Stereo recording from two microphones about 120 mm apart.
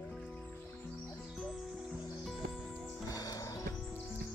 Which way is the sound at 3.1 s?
30° left (ahead or behind).